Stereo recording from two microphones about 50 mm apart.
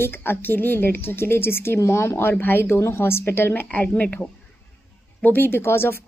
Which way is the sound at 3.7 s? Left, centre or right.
Left.